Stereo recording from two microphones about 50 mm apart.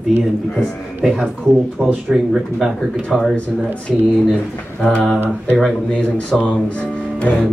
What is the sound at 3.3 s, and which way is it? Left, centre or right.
Speech, left.